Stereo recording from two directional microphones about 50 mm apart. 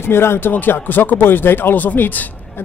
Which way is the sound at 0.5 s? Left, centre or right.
Left.